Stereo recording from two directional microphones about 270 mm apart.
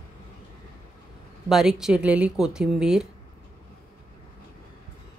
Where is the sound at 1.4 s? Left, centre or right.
Centre.